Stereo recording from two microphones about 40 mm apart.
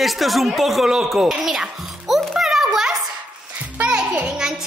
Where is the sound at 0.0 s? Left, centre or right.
Centre.